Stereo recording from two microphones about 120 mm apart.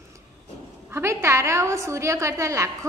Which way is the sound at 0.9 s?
25° right (ahead or behind).